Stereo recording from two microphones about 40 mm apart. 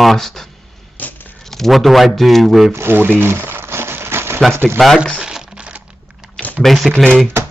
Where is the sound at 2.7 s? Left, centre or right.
Right.